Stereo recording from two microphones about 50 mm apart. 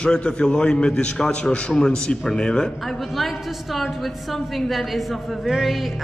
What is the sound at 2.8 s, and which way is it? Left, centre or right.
A woman's voice, centre.